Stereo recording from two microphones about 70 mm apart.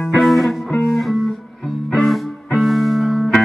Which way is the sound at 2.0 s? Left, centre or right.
Centre.